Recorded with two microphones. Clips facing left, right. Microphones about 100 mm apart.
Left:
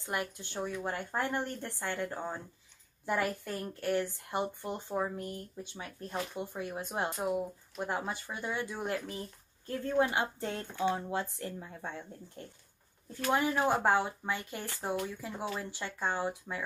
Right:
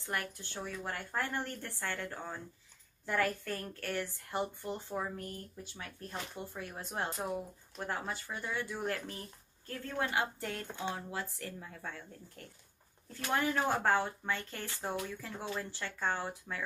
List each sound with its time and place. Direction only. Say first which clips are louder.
0.0 s a woman's voice: left 3 dB; 20° left (ahead or behind)